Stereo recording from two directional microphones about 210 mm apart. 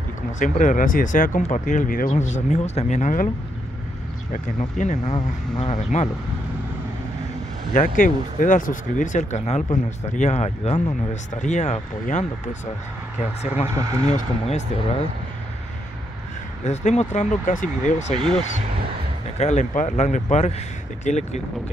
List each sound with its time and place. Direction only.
0.4 s speech: 35° left (ahead or behind)
4.3 s speech: 35° left (ahead or behind)
7.7 s speech: 35° left (ahead or behind)
13.7 s speech: 15° right (ahead or behind)
14.0 s speech: 30° left (ahead or behind)
16.6 s speech: 35° left (ahead or behind)
19.3 s speech: 35° left (ahead or behind)